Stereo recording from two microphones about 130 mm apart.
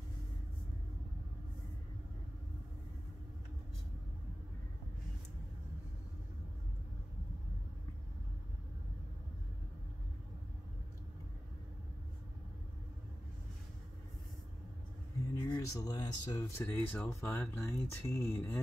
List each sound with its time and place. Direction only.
15.4 s speech: 30° left (ahead or behind)